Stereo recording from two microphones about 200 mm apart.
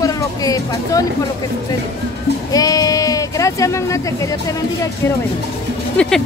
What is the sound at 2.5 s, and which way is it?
Speech, 15° left (ahead or behind).